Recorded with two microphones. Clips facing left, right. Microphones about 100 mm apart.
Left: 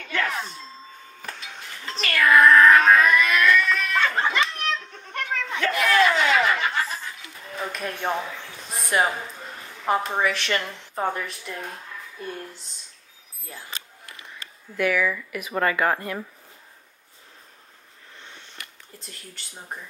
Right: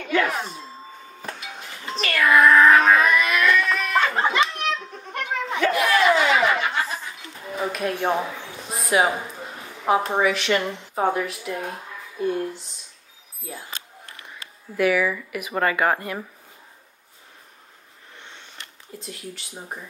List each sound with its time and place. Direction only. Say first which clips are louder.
0.0 s speech: right 5 dB; 15° right (ahead or behind)
1.2 s a sound: right 3 dB; 5° right (ahead or behind)
4.6 s children playing: right 2 dB; 5° right (ahead or behind)
6.6 s snicker: right 1 dB; 5° right (ahead or behind)
7.6 s a woman's voice: right 5 dB; 5° right (ahead or behind)
8.6 s a sound: right 3 dB; centre (ahead or behind)
9.4 s a woman's voice: right 3 dB; 5° right (ahead or behind)
14.8 s speech: right 3 dB; 10° right (ahead or behind)
18.6 s speech: right 4 dB; centre (ahead or behind)